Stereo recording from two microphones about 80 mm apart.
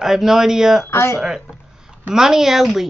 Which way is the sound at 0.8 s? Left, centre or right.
Left.